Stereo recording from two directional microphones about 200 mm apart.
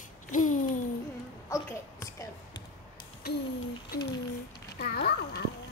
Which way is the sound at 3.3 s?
50° left (ahead or behind).